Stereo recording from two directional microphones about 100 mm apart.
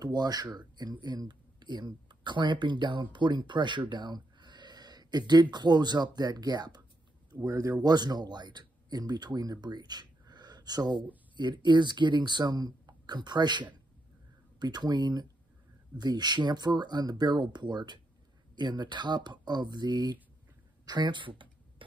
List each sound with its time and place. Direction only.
0.0 s speech: 40° right (ahead or behind)
7.4 s speech: 35° right (ahead or behind)
20.8 s a sound: 50° right (ahead or behind)